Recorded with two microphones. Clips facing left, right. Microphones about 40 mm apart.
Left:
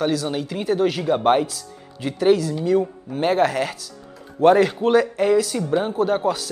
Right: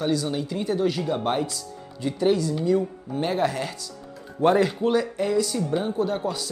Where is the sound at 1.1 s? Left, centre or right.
Left.